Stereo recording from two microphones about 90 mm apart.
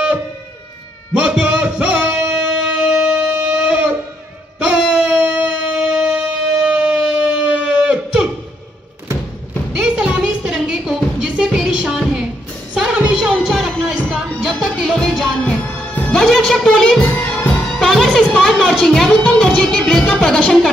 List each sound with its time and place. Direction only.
1.1 s music: 10° right (ahead or behind)
4.6 s a sound: 10° right (ahead or behind)
9.8 s music: 10° right (ahead or behind)
12.7 s music: 10° right (ahead or behind)